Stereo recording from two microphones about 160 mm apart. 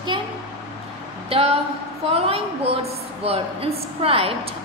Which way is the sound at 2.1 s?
35° right (ahead or behind).